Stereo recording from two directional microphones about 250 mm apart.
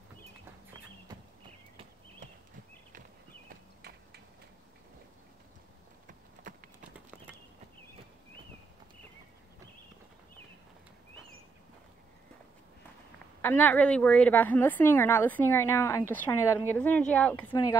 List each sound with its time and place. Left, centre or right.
3.4 s horse: right
6.0 s a sound: right
13.4 s a woman's voice: centre